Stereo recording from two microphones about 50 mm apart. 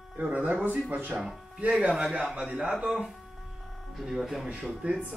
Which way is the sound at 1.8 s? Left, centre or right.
Centre.